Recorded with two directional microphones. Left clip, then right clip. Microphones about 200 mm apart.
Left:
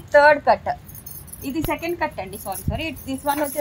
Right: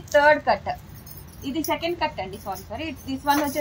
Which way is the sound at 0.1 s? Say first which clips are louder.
Left 4 dB; 40° left (ahead or behind).